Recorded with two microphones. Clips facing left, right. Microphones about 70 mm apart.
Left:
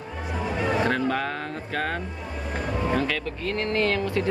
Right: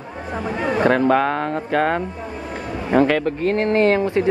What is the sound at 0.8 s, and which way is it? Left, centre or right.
Speech, right.